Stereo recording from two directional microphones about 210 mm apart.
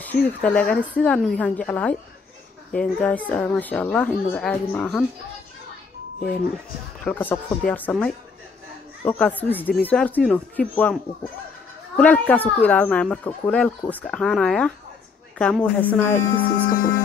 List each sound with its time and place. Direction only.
0.0 s speech: 5° left (ahead or behind)
7.1 s a woman's voice: 5° left (ahead or behind)
16.6 s music: 45° left (ahead or behind)